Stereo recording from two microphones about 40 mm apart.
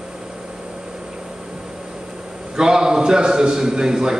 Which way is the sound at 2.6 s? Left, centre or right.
Centre.